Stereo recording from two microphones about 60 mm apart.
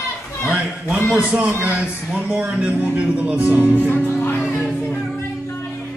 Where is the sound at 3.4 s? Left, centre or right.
Right.